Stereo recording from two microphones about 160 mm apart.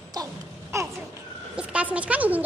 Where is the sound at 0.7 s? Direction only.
20° right (ahead or behind).